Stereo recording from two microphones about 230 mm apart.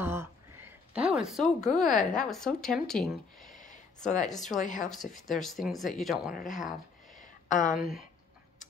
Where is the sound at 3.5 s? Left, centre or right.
Left.